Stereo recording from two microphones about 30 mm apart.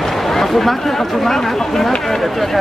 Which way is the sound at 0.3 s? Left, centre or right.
Centre.